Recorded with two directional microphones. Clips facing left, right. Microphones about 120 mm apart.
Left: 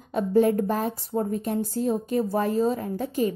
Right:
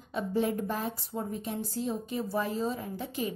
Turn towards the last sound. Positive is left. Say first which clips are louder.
# left 9 dB
turn(degrees=45)  # may be behind; listen again after turning